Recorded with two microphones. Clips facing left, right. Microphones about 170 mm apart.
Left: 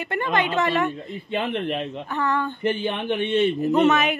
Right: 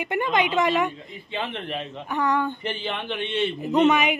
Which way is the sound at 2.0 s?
15° right (ahead or behind).